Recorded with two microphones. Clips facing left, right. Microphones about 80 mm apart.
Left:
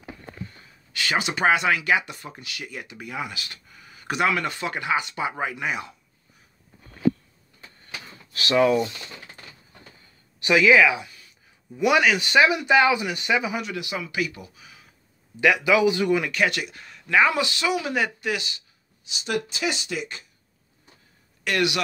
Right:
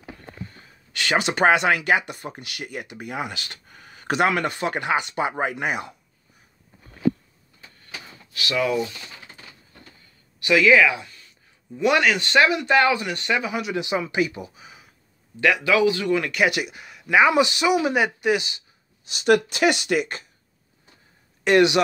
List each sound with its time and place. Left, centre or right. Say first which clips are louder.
1.2 s speech: right 3 dB; right
1.9 s speech: right 2 dB; right
2.4 s speech: right 2 dB; right
2.8 s speech: right 2 dB; right
3.3 s a sound: right 2 dB; right
4.2 s speech: right 2 dB; right
5.4 s speech: right 3 dB; right
8.3 s speech: left 4 dB; left
10.4 s speech: even; centre
13.7 s speech: right 5 dB; right
15.4 s speech: even; centre
16.4 s speech: right 3 dB; centre
19.0 s speech: right 9 dB; right
21.5 s speech: right 7 dB; right